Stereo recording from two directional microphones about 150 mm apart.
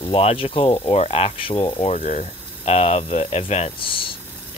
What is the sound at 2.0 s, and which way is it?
Speech, 55° left (ahead or behind).